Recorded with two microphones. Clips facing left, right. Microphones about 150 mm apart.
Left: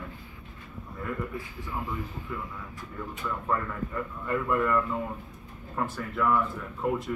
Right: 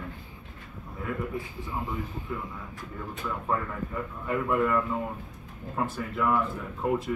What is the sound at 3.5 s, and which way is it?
Speech, 10° right (ahead or behind).